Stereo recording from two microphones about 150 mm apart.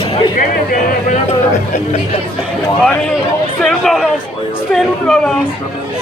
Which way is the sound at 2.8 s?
5° left (ahead or behind).